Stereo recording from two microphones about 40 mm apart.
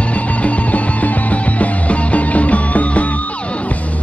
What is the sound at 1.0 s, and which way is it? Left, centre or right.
Music, left.